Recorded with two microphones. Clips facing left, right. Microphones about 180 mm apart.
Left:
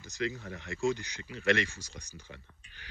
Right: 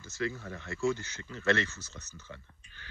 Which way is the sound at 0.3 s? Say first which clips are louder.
Even; 45° right (ahead or behind).